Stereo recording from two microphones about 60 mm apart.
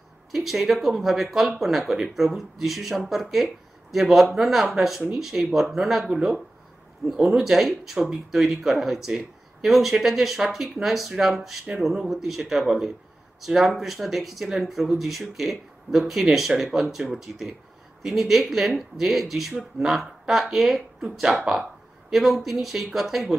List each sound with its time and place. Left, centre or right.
0.3 s speech: centre